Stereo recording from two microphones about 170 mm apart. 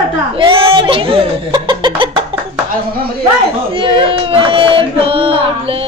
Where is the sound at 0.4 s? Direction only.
30° right (ahead or behind).